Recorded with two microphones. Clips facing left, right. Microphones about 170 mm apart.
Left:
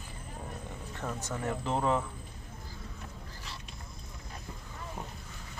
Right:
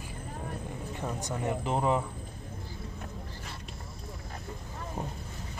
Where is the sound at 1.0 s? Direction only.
15° right (ahead or behind).